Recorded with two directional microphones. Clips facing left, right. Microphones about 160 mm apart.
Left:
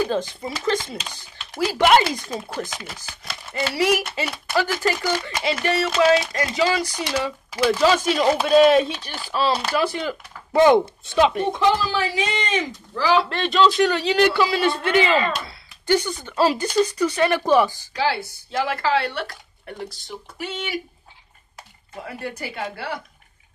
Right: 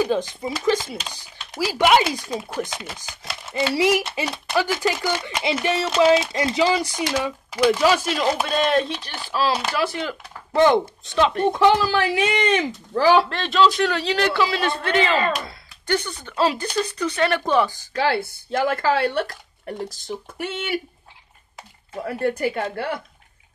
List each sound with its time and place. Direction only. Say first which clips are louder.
0.4 s speech: right 2 dB; 10° right (ahead or behind)
8.5 s speech: left 6 dB; 5° left (ahead or behind)
11.9 s a man's voice: right 3 dB; 60° right (ahead or behind)
13.3 s speech: even; centre (ahead or behind)
17.9 s speech: right 3 dB; 55° right (ahead or behind)
22.0 s speech: right 9 dB; 50° right (ahead or behind)